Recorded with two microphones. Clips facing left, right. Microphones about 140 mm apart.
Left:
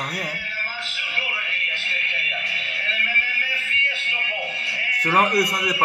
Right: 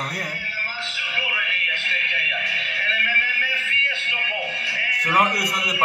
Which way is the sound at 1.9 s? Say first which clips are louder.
Right 2 dB; 25° left (ahead or behind).